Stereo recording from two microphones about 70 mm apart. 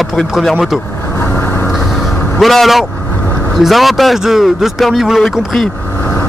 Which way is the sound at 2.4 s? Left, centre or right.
Centre.